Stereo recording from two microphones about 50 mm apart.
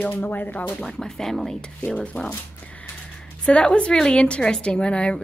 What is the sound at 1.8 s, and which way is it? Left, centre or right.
Speech, left.